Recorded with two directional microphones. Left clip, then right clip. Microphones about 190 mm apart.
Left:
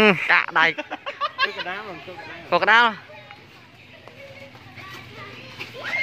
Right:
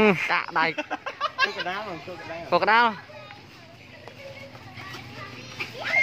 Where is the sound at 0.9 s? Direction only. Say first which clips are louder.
Left 2 dB; 35° right (ahead or behind).